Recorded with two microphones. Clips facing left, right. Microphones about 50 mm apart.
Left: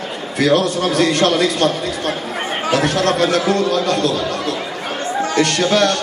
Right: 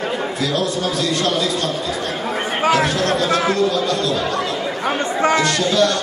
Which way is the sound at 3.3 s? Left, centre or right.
Right.